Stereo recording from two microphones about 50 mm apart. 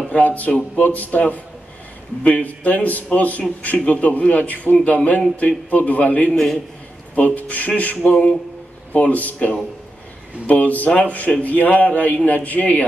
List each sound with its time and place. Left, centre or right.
0.1 s a man's voice: left
6.3 s a man's voice: centre
7.2 s a man's voice: left
8.0 s speech: left
8.9 s a man's voice: left